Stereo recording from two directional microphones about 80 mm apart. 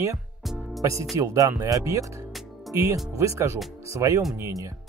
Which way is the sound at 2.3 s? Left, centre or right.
Centre.